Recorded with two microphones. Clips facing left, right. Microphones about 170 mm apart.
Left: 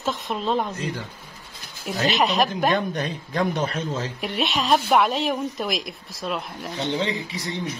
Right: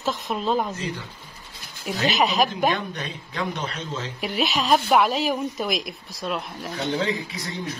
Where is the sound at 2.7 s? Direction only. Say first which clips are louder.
Left 4 dB; 45° left (ahead or behind).